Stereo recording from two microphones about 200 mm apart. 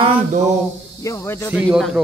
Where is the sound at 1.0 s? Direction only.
15° left (ahead or behind).